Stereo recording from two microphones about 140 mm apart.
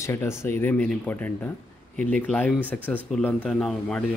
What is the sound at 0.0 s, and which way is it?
A man's voice, 20° left (ahead or behind).